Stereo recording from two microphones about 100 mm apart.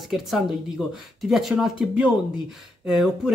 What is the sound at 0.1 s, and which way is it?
Speech, centre (ahead or behind).